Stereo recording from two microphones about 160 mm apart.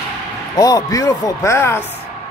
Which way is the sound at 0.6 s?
20° left (ahead or behind).